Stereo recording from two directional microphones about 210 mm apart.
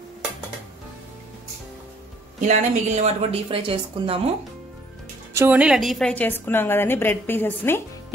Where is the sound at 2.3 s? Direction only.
35° right (ahead or behind).